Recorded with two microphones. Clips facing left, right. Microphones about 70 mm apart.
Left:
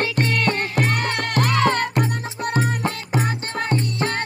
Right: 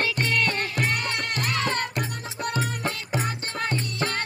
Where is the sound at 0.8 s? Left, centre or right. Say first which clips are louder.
Left 5 dB; left.